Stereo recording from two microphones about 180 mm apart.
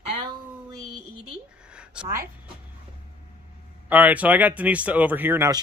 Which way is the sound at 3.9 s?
10° right (ahead or behind).